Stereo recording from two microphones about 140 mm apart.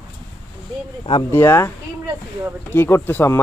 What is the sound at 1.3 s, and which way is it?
Speech, 15° left (ahead or behind).